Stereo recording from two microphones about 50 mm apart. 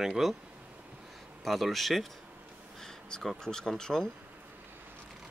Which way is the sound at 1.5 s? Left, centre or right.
Centre.